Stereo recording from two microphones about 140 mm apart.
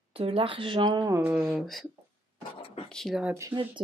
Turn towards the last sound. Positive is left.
turn(degrees=-10)  # may be behind; listen again after turning